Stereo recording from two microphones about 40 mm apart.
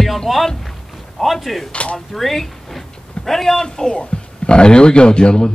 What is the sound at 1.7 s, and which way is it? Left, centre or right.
Speech, left.